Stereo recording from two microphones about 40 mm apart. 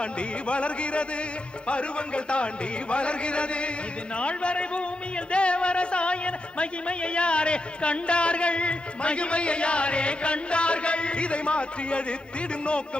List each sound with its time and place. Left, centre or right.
0.0 s music: left